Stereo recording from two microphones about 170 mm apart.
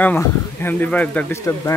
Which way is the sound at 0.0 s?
10° left (ahead or behind).